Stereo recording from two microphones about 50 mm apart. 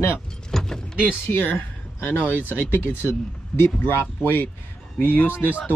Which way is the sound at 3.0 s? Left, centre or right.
Left.